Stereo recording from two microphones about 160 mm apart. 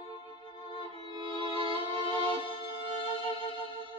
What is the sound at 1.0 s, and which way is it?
Music, 30° right (ahead or behind).